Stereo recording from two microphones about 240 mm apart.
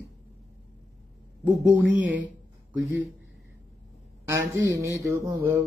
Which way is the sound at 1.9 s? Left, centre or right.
Centre.